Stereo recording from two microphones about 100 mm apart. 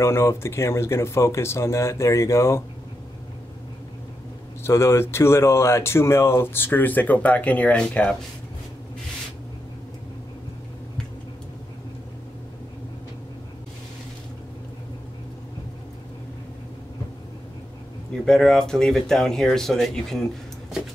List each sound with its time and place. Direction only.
0.0 s speech: 25° left (ahead or behind)
4.6 s speech: 25° left (ahead or behind); by 8.2 s 10° left (ahead or behind)
18.2 s speech: 5° left (ahead or behind)